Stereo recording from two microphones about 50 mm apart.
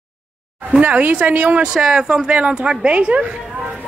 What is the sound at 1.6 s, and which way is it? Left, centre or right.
A woman's voice, centre.